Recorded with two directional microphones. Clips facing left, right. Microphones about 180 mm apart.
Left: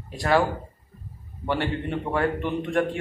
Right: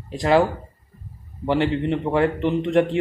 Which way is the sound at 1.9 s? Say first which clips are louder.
Right 5 dB; 20° right (ahead or behind).